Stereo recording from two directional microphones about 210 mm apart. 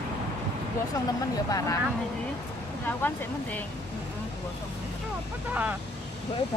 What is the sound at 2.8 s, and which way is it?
Speech, 10° left (ahead or behind).